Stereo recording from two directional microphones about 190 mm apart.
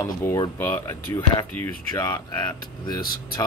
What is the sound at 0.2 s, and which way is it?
Speech, 15° left (ahead or behind).